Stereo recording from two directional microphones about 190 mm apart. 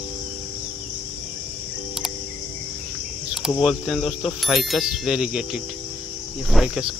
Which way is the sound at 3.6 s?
5° right (ahead or behind).